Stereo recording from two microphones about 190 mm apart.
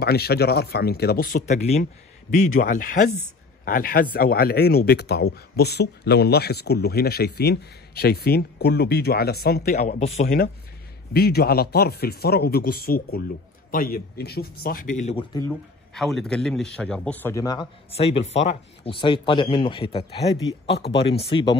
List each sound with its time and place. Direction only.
0.0 s a man's voice: 55° left (ahead or behind)
9.9 s speech: 35° left (ahead or behind)
11.1 s a man's voice: 55° left (ahead or behind); by 15.2 s 35° left (ahead or behind)
15.9 s a man's voice: centre (ahead or behind); by 17.6 s 20° left (ahead or behind)
17.9 s speech: 30° left (ahead or behind)
20.8 s speech: 65° left (ahead or behind)
21.2 s speech: 25° left (ahead or behind)